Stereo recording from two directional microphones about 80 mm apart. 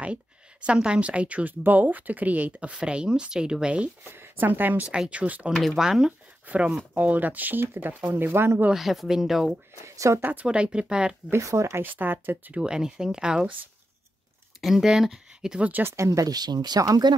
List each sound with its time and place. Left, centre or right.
0.0 s speech: centre
4.1 s speech: right
5.5 s speech: centre
6.4 s speech: centre
8.6 s speech: centre
9.8 s speech: right
10.4 s speech: centre
11.2 s speech: right
11.8 s speech: right
12.5 s speech: centre
14.6 s speech: centre
15.7 s speech: right
16.1 s speech: right